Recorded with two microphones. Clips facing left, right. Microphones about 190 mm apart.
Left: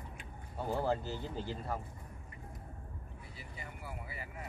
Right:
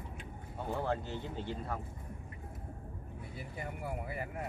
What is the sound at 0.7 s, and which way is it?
Speech, 5° left (ahead or behind).